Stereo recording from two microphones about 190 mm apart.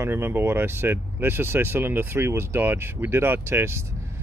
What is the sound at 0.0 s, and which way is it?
Speech, 10° right (ahead or behind).